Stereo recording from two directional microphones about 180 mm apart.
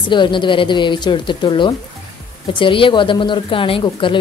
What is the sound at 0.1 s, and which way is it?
A woman's voice, 25° left (ahead or behind).